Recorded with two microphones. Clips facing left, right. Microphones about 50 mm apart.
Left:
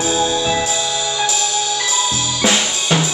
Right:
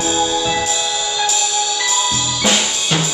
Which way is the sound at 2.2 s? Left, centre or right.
Centre.